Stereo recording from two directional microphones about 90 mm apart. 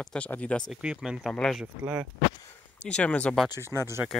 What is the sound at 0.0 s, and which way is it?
Speech, 10° left (ahead or behind).